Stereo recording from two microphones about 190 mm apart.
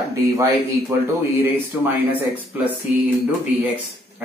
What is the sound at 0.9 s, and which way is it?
Speech, 15° right (ahead or behind).